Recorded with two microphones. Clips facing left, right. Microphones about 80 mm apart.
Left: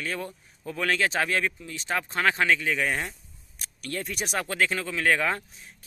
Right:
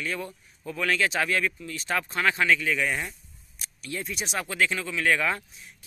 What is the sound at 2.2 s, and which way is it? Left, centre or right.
Speech, left.